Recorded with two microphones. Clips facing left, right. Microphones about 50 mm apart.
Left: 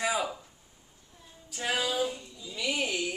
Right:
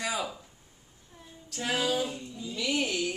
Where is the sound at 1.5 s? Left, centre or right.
Centre.